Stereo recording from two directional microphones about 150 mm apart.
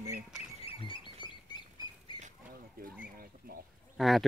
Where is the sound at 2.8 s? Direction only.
70° right (ahead or behind).